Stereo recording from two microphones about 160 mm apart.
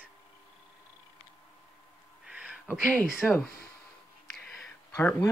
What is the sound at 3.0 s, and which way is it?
Speech, centre (ahead or behind).